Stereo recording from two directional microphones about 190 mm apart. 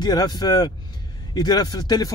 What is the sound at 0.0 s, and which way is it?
Speech, 20° left (ahead or behind).